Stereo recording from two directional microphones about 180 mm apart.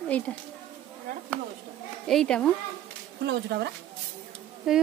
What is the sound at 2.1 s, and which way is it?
Speech, 5° left (ahead or behind).